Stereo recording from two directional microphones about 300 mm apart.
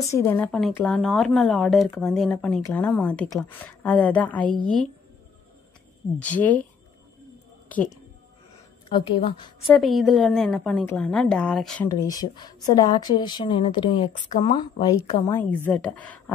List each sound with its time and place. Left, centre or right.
0.1 s speech: centre
6.2 s speech: centre
8.9 s speech: centre
9.8 s speech: centre